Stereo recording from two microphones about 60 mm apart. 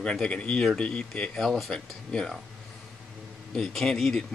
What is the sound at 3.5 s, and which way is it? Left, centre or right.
Speech, centre.